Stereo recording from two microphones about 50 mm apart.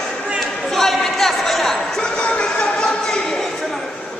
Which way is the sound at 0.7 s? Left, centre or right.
Centre.